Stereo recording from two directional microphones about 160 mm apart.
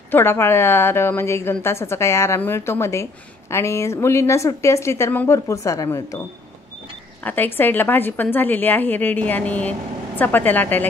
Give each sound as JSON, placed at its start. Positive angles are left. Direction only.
{"t": 0.1, "sound": "a woman's voice", "side_deg": 15}
{"t": 7.2, "sound": "a woman's voice", "side_deg": 10}